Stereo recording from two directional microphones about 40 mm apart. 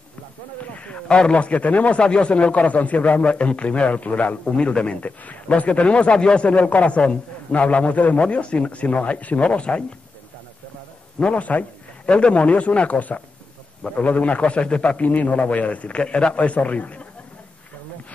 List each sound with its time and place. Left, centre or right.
0.8 s a man's voice: left
2.0 s a man's voice: left
4.5 s a man's voice: left
6.1 s a man's voice: centre
6.4 s a man's voice: left
11.3 s a man's voice: left
12.1 s a man's voice: left
15.0 s a man's voice: left